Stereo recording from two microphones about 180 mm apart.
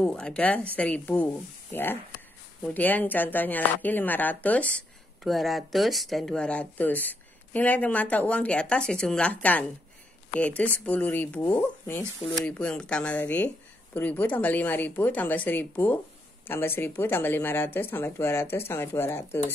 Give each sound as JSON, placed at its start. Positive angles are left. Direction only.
{"t": 0.0, "sound": "speech", "side_deg": 5}